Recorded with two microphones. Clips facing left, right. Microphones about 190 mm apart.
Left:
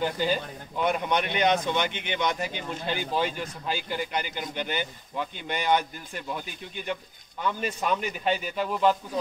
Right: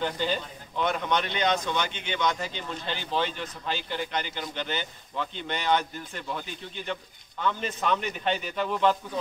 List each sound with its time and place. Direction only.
0.0 s speech: 10° left (ahead or behind)